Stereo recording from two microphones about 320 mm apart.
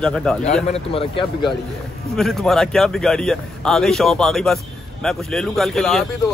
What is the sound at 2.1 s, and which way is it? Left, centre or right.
Speech, centre.